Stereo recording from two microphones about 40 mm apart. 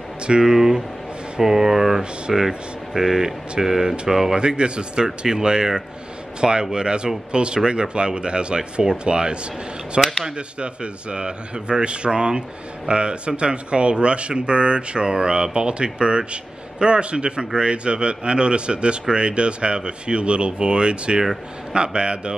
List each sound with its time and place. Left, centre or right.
0.3 s speech: centre
4.4 s speech: right